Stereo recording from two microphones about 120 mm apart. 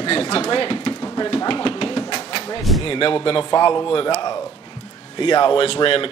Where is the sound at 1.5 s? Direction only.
45° left (ahead or behind).